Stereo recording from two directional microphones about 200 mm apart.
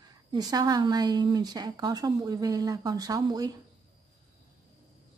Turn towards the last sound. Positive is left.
turn(degrees=-20)  # may be behind; listen again after turning